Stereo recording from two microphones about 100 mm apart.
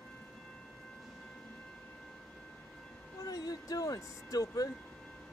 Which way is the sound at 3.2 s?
40° left (ahead or behind).